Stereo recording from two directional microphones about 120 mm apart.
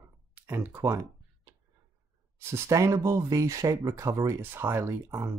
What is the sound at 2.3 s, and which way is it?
Speech, 20° right (ahead or behind).